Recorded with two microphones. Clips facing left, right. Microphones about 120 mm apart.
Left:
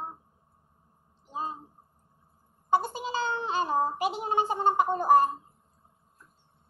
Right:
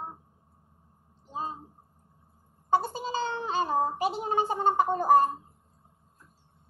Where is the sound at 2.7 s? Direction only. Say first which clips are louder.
Even; 35° right (ahead or behind).